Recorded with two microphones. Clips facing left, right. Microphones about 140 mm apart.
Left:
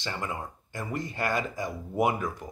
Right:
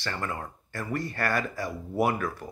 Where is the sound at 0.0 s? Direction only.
15° left (ahead or behind).